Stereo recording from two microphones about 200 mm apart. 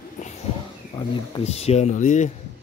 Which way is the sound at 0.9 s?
30° left (ahead or behind).